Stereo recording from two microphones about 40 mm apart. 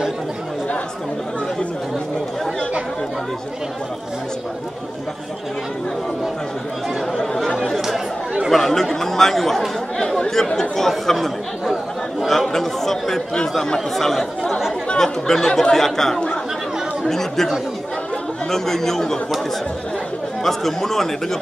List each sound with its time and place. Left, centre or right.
7.5 s chatter: centre
8.5 s speech: centre
9.9 s chatter: centre
12.3 s chatter: centre
13.7 s speech: centre
18.5 s speech: centre
20.4 s speech: centre